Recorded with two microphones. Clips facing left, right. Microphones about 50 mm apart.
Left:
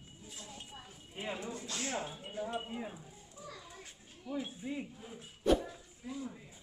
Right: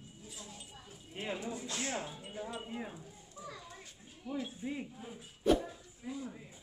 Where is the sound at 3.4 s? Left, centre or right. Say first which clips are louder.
Right 2 dB; centre.